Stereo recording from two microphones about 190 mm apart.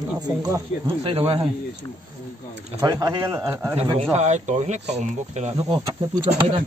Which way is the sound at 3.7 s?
35° right (ahead or behind).